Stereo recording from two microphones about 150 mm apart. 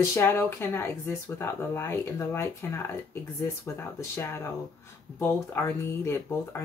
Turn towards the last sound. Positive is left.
turn(degrees=15)  # may be behind; listen again after turning